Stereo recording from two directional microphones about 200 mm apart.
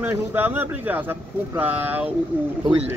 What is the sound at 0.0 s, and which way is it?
Speech, 10° right (ahead or behind).